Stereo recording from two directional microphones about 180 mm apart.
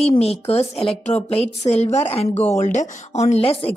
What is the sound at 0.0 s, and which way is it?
A woman's voice, 35° left (ahead or behind).